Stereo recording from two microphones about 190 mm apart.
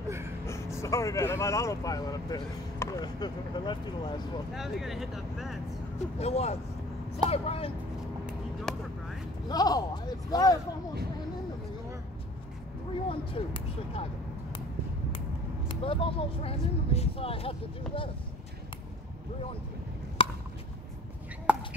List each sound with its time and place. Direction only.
0.5 s speech: 15° left (ahead or behind)
4.6 s speech: centre (ahead or behind)
5.9 s speech: 35° left (ahead or behind)
8.7 s a sound: 5° left (ahead or behind)
9.5 s speech: 20° left (ahead or behind)
13.1 s speech: 25° left (ahead or behind)
15.7 s speech: 30° left (ahead or behind)
20.2 s chop: 30° left (ahead or behind)
21.5 s a sound: 5° right (ahead or behind)